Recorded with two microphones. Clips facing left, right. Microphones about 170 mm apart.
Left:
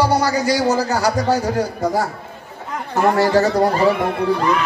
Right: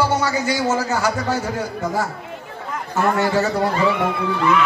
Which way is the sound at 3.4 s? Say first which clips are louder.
Left 3 dB; 35° left (ahead or behind).